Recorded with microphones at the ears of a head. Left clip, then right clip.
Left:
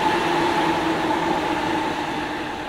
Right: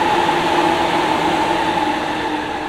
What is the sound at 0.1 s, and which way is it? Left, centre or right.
Vehicle, right.